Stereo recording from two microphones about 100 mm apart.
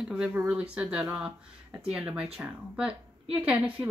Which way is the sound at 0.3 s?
15° right (ahead or behind).